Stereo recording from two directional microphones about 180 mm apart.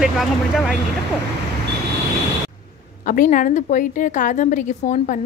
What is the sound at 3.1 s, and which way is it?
A woman's voice, 45° left (ahead or behind).